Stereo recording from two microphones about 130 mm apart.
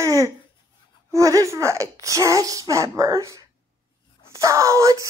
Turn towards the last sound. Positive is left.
turn(degrees=-25)  # may be behind; listen again after turning